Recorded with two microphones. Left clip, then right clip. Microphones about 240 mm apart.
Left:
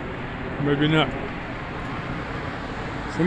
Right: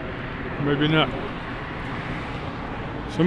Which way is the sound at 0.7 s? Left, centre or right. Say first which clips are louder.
Even; right.